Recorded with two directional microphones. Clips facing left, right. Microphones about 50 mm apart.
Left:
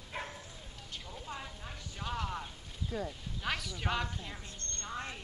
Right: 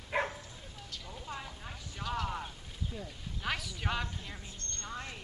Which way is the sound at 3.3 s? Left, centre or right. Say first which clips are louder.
Right 1 dB; centre.